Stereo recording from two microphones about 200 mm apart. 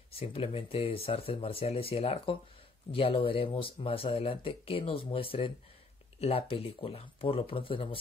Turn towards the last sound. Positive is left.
turn(degrees=25)  # may be behind; listen again after turning